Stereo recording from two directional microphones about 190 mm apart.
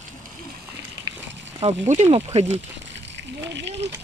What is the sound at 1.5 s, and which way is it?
Speech, 35° right (ahead or behind).